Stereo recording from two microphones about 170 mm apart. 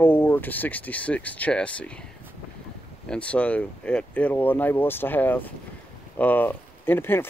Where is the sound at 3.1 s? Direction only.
5° left (ahead or behind).